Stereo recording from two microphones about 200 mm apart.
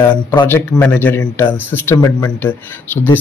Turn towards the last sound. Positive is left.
turn(degrees=10)  # may be behind; listen again after turning